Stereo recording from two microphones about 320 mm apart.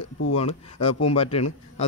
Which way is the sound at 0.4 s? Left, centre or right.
Centre.